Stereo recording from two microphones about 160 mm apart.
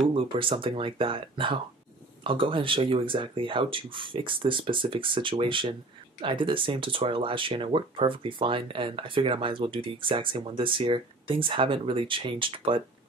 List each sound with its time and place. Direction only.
0.1 s speech: 30° right (ahead or behind)